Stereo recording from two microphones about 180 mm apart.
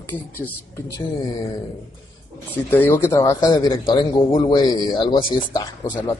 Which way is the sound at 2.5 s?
10° left (ahead or behind).